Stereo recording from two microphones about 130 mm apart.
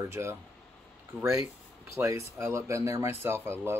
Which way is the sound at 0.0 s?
20° right (ahead or behind).